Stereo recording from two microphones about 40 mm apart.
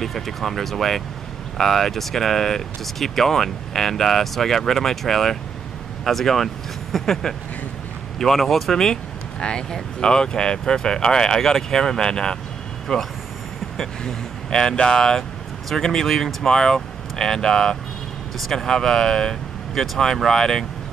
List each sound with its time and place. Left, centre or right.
0.0 s speech: centre
12.9 s speech: centre
14.0 s speech: centre